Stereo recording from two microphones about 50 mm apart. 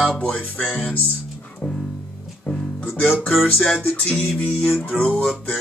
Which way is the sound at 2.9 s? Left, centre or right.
Left.